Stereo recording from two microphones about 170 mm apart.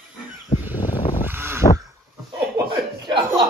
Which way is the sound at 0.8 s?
30° left (ahead or behind).